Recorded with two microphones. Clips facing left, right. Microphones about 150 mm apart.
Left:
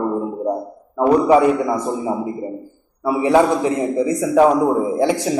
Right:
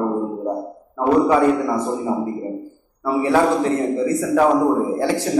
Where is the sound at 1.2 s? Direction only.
15° left (ahead or behind).